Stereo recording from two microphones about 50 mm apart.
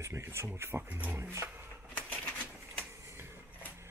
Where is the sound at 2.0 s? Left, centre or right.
Left.